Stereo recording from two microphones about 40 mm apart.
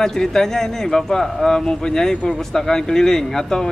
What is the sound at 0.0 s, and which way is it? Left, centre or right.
Speech, centre.